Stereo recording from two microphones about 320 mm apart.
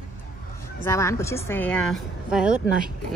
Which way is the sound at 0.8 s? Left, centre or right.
Centre.